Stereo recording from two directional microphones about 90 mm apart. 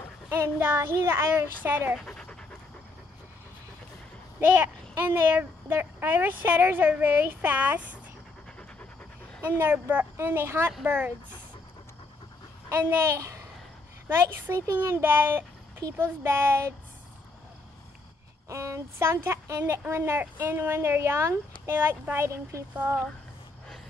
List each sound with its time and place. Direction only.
0.3 s speech: 25° right (ahead or behind)
2.0 s speech: 10° left (ahead or behind)
4.6 s speech: 25° right (ahead or behind)
9.6 s speech: 20° right (ahead or behind)
12.6 s a child's voice: 30° right (ahead or behind)
18.5 s speech: 35° right (ahead or behind)